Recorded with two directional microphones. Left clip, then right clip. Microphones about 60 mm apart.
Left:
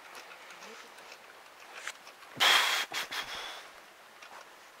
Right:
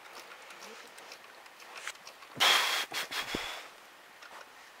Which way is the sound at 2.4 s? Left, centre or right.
Centre.